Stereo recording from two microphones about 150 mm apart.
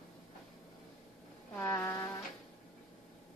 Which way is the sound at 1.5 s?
20° left (ahead or behind).